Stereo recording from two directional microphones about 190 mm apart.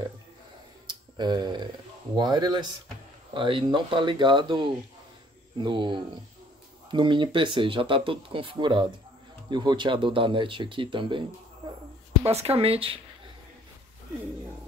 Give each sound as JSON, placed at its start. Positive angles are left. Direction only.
{"t": 0.8, "sound": "tick-tock", "side_deg": -25}
{"t": 2.1, "sound": "speech", "side_deg": -20}